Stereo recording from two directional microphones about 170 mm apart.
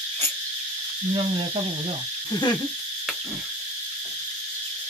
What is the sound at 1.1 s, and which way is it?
Owl, 35° right (ahead or behind).